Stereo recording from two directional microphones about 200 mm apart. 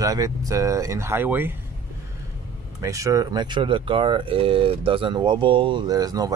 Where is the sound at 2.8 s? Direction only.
15° right (ahead or behind).